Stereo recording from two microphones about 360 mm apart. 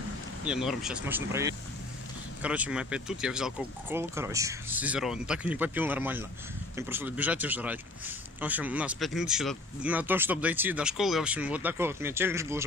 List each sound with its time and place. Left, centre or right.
0.5 s speech: centre